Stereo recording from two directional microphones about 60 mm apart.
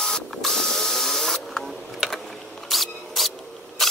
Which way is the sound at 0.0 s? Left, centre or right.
Centre.